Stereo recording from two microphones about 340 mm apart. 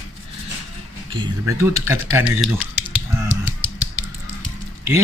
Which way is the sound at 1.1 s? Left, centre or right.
Centre.